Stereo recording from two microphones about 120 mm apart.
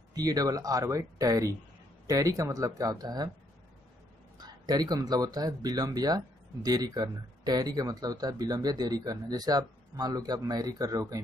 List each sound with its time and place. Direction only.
0.1 s speech: 30° right (ahead or behind)
4.4 s speech: 35° right (ahead or behind)